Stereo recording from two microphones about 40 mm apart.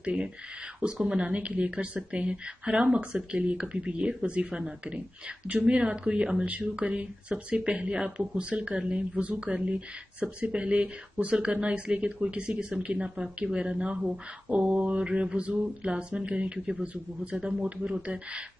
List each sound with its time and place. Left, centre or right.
0.0 s speech: right
5.7 s speech: right